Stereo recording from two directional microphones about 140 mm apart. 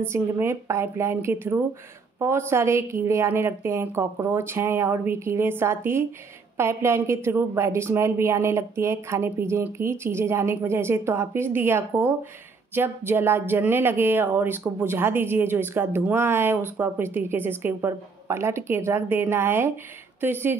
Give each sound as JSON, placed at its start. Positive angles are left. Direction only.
{"t": 0.0, "sound": "a woman's voice", "side_deg": -15}